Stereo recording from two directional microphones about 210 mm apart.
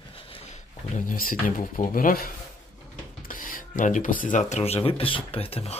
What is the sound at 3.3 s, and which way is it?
Speech, 40° left (ahead or behind).